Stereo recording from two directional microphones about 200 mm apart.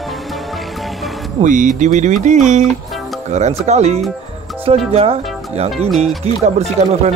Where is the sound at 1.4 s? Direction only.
40° right (ahead or behind).